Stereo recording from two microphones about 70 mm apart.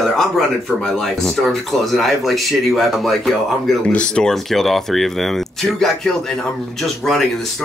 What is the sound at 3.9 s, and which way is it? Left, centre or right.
Speech, centre.